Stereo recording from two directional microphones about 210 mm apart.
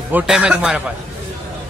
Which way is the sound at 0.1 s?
5° right (ahead or behind).